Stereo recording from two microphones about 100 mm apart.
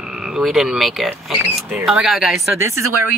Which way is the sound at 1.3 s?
20° right (ahead or behind).